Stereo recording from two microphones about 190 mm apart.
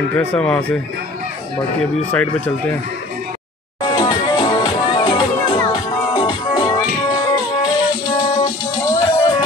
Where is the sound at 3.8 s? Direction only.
25° left (ahead or behind).